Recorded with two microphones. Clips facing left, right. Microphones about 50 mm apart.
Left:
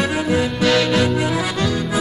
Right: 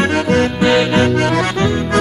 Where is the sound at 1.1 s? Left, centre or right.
Right.